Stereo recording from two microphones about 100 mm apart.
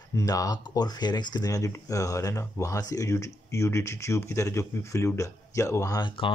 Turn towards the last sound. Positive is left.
turn(degrees=55)  # may be behind; listen again after turning